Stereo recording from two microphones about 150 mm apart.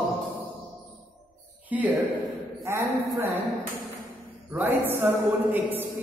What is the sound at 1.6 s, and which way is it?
A woman's voice, 10° right (ahead or behind).